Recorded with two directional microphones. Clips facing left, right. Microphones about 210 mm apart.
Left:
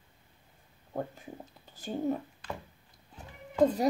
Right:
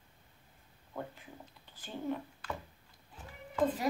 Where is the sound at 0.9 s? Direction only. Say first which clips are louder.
Left 6 dB; 40° left (ahead or behind).